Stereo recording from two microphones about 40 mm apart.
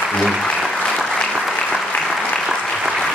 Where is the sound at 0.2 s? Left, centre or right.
Centre.